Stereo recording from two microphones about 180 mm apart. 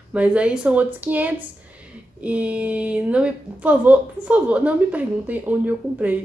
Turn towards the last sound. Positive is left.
turn(degrees=-10)  # may be behind; listen again after turning